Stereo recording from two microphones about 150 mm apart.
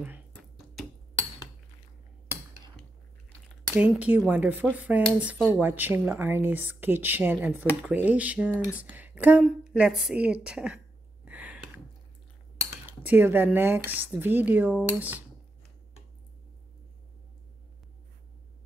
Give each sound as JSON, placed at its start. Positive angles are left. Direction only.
{"t": 3.9, "sound": "speech", "side_deg": -5}
{"t": 11.2, "sound": "a sound", "side_deg": -10}
{"t": 12.8, "sound": "speech", "side_deg": -10}